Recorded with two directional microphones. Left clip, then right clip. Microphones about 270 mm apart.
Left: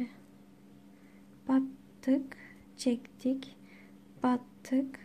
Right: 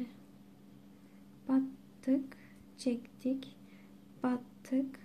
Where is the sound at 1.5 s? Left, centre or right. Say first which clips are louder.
Left 3 dB; centre.